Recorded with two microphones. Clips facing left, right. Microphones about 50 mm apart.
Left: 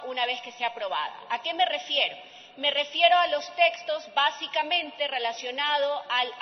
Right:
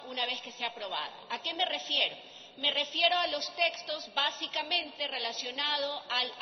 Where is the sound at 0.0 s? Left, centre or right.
Left.